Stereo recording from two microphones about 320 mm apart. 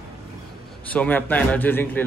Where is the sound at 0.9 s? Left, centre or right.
Centre.